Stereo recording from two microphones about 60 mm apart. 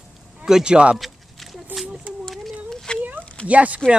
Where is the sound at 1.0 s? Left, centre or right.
Centre.